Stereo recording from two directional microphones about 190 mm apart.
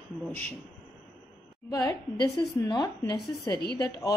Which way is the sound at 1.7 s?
20° left (ahead or behind).